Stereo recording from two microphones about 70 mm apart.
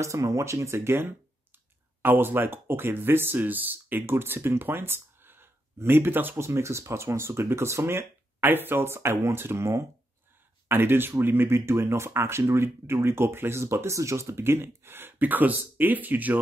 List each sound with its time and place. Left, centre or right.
0.0 s speech: right
6.4 s speech: right